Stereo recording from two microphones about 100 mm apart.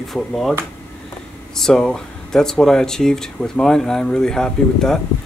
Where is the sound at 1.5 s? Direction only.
5° left (ahead or behind).